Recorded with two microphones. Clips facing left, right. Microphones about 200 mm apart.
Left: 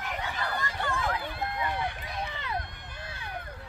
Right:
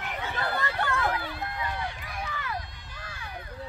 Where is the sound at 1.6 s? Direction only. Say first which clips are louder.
Left 2 dB; 55° left (ahead or behind).